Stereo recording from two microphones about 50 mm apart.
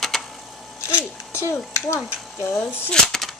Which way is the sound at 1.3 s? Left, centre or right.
Left.